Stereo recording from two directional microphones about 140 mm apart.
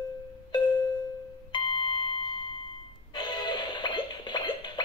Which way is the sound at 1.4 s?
35° left (ahead or behind).